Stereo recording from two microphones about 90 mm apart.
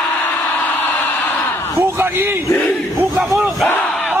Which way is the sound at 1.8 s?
25° right (ahead or behind).